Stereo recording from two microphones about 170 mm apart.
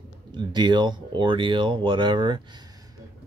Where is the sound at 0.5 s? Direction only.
25° right (ahead or behind).